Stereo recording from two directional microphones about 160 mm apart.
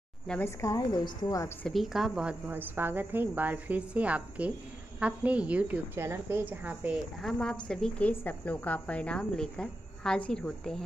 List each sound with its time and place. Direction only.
0.3 s a woman's voice: 15° left (ahead or behind)
1.7 s a woman's voice: centre (ahead or behind)
7.2 s a woman's voice: 5° left (ahead or behind)